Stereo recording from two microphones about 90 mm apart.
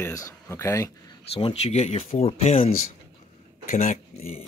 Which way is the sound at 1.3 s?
90° left.